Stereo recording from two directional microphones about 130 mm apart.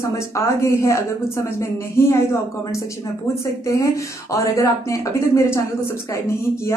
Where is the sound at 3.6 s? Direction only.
25° left (ahead or behind).